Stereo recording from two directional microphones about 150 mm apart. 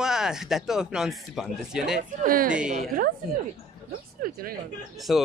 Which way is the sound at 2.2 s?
65° right (ahead or behind).